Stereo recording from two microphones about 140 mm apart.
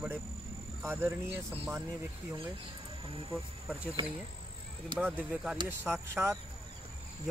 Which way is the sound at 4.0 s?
40° right (ahead or behind).